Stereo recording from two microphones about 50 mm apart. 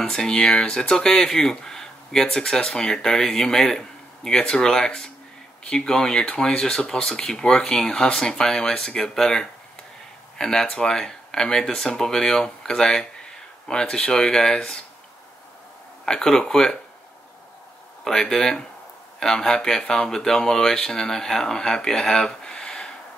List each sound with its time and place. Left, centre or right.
0.0 s speech: centre
16.1 s speech: centre
18.0 s speech: centre